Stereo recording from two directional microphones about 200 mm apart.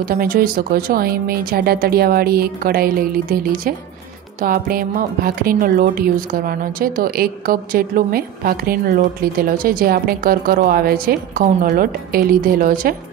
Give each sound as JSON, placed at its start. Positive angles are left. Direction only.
{"t": 0.1, "sound": "a woman's voice", "side_deg": -45}